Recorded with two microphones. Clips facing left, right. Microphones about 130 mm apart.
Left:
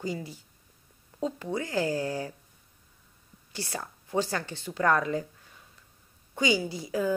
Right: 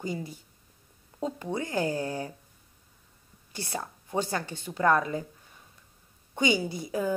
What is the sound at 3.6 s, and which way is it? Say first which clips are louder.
Speech: right 1 dB; 15° right (ahead or behind).